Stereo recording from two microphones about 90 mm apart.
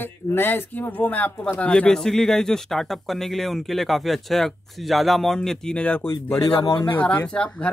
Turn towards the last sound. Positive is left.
turn(degrees=10)  # may be behind; listen again after turning